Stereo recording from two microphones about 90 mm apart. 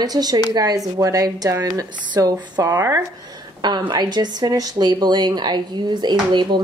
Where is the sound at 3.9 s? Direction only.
55° right (ahead or behind).